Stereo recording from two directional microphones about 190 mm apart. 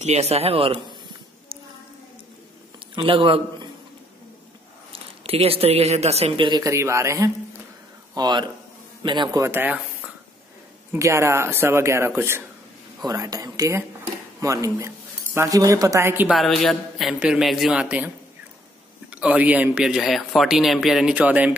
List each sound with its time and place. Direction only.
0.0 s speech: 35° right (ahead or behind)
2.9 s a man's voice: 25° right (ahead or behind)
4.9 s speech: 30° right (ahead or behind); by 16.3 s 10° right (ahead or behind)
16.3 s speech: centre (ahead or behind)
19.1 s speech: 5° right (ahead or behind)